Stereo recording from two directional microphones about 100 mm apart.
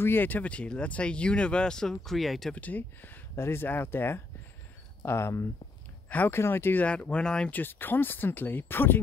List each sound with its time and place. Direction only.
0.0 s speech: 20° left (ahead or behind); by 2.5 s centre (ahead or behind)
2.5 s speech: 15° left (ahead or behind)